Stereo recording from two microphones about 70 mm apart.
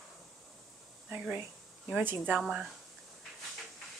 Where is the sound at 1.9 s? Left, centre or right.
Right.